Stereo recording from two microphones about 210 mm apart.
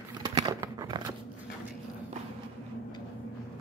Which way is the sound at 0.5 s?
20° right (ahead or behind).